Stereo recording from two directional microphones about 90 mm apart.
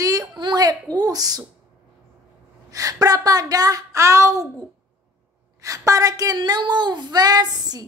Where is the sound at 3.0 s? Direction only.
45° right (ahead or behind).